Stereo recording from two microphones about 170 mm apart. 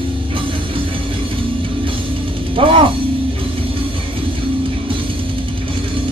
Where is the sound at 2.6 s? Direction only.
30° right (ahead or behind).